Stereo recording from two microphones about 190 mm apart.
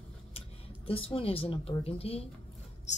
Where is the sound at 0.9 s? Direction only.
30° left (ahead or behind).